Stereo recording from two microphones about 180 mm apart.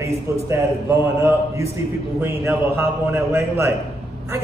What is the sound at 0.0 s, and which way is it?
A man's voice, 15° right (ahead or behind).